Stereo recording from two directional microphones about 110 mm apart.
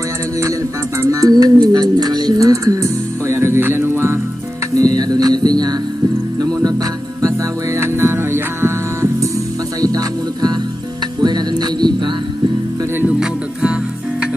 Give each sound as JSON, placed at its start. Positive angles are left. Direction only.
{"t": 1.0, "sound": "speech", "side_deg": -35}
{"t": 4.7, "sound": "music", "side_deg": -35}
{"t": 7.8, "sound": "music", "side_deg": -25}
{"t": 13.0, "sound": "music", "side_deg": -10}